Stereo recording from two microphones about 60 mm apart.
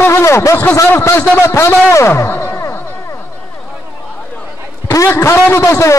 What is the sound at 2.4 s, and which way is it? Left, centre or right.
Music, left.